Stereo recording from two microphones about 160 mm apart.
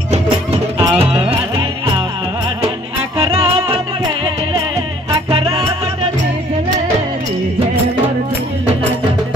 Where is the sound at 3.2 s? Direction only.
35° right (ahead or behind).